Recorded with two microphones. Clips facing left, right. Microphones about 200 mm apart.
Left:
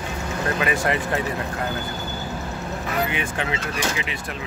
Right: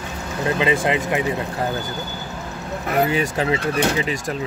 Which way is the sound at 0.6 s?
20° right (ahead or behind).